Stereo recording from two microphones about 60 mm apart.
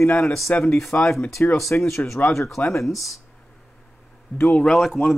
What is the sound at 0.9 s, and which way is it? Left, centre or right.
Speech, left.